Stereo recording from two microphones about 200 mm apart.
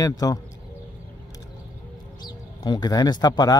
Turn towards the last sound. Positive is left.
turn(degrees=20)  # may be behind; listen again after turning